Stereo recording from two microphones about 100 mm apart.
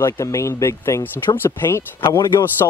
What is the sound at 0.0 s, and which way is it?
Speech, 30° left (ahead or behind).